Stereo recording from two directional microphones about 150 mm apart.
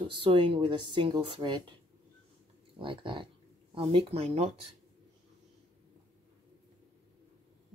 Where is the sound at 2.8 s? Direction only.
35° right (ahead or behind).